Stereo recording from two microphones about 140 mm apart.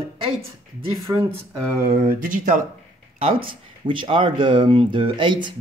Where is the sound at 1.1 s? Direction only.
25° right (ahead or behind).